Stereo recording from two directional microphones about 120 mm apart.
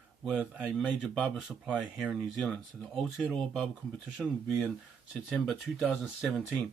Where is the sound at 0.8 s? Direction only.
5° right (ahead or behind).